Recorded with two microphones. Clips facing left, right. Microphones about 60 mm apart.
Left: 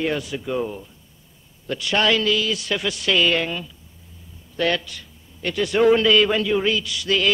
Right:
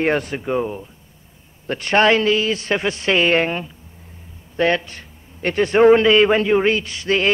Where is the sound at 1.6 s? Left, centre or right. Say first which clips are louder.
Right 5 dB; right.